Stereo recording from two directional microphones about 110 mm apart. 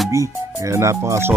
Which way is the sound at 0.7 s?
25° right (ahead or behind).